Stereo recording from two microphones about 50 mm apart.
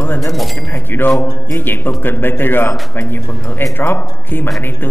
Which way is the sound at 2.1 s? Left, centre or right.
Left.